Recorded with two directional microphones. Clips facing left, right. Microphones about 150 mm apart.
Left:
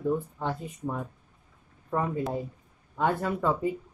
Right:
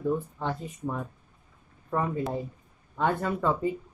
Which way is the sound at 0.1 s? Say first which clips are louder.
Even; 15° left (ahead or behind).